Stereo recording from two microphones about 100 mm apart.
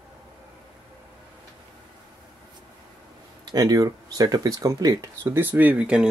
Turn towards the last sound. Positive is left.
turn(degrees=-10)  # may be behind; listen again after turning